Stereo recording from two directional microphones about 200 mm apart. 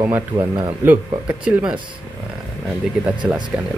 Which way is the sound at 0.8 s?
5° right (ahead or behind).